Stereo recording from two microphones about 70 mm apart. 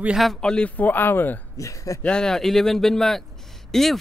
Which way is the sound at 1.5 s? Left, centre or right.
Left.